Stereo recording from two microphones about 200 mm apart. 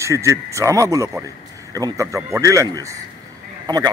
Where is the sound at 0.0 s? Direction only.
15° right (ahead or behind).